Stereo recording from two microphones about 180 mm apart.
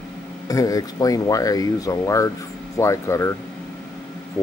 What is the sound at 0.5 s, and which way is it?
Speech, 20° left (ahead or behind).